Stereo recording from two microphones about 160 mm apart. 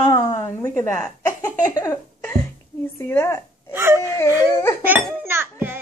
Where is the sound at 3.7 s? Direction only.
15° right (ahead or behind).